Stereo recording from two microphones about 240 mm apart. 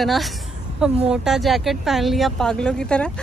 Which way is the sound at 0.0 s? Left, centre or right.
Centre.